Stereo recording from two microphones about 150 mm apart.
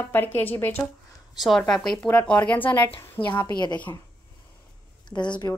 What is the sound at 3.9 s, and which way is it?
Speech, 25° left (ahead or behind).